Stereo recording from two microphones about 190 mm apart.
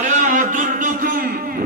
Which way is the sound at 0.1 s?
40° right (ahead or behind).